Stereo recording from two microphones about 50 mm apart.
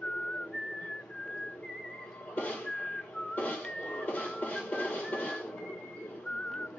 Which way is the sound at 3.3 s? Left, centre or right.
Left.